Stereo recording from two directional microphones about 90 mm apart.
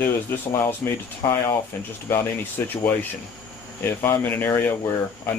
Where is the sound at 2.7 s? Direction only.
20° left (ahead or behind).